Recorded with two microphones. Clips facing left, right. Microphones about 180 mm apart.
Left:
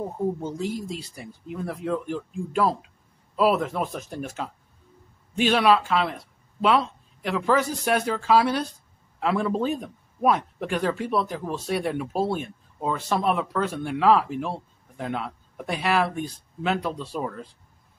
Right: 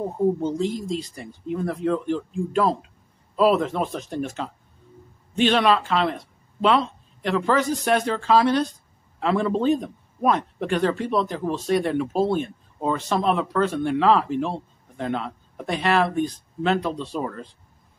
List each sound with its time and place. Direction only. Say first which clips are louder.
0.6 s a man's voice: right 4 dB; 10° left (ahead or behind)